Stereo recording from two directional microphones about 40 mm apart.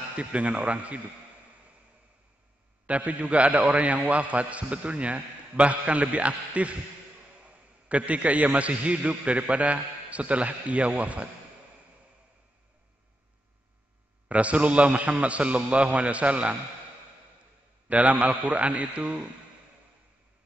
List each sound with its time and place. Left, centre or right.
0.1 s a man's voice: right
2.9 s a man's voice: right
14.3 s a man's voice: right
17.8 s a man's voice: right